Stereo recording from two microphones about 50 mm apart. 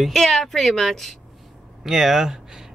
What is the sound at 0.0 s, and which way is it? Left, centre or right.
Speech, centre.